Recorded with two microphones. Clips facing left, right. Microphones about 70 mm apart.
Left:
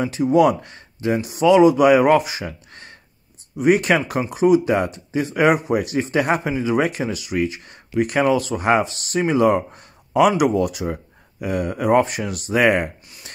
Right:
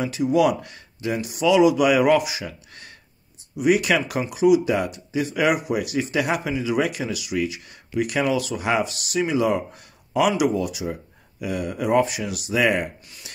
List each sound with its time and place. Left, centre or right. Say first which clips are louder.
0.0 s speech: left 4 dB; left